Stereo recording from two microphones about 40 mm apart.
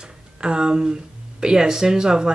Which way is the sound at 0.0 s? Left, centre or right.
Right.